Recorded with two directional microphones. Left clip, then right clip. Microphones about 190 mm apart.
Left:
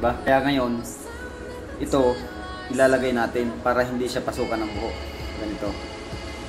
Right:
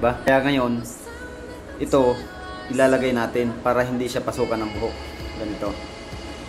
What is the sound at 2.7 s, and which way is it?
Speech, 30° right (ahead or behind).